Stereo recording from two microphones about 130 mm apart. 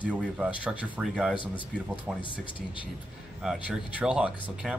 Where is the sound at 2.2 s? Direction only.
40° left (ahead or behind).